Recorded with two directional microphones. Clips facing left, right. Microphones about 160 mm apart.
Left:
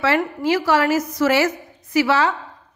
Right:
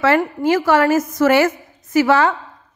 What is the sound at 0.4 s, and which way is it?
A woman's voice, 50° right (ahead or behind).